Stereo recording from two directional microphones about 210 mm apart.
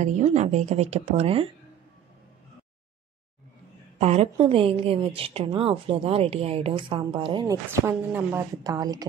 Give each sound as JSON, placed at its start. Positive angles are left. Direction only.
{"t": 0.0, "sound": "a woman's voice", "side_deg": -35}
{"t": 4.0, "sound": "a woman's voice", "side_deg": -30}
{"t": 7.8, "sound": "speech", "side_deg": -10}